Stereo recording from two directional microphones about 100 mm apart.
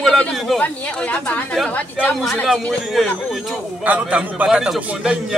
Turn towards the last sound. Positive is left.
turn(degrees=-5)  # may be behind; listen again after turning